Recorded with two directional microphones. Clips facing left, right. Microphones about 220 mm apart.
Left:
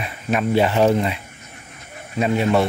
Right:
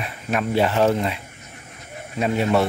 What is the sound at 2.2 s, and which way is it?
Speech, centre (ahead or behind).